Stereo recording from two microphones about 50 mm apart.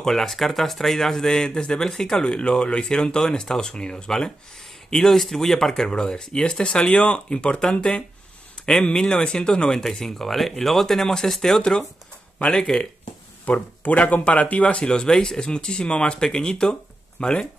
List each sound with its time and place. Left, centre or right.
0.0 s speech: centre
13.5 s speech: left